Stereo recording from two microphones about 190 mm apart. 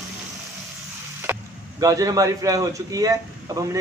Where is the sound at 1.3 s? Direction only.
10° right (ahead or behind).